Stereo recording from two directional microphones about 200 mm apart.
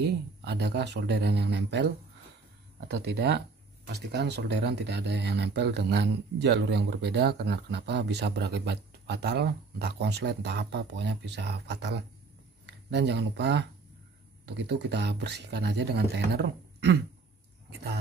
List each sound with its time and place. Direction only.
0.4 s speech: 55° right (ahead or behind)
2.9 s speech: 55° right (ahead or behind)